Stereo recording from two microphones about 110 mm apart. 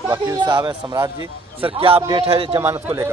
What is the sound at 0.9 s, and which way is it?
Speech, 25° right (ahead or behind).